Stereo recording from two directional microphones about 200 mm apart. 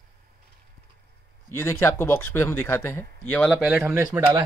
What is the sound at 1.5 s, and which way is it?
Speech, 15° left (ahead or behind).